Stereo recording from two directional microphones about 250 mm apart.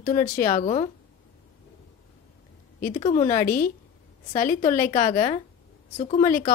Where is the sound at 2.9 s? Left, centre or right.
Left.